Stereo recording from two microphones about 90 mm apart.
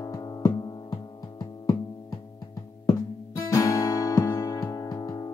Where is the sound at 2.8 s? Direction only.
40° left (ahead or behind).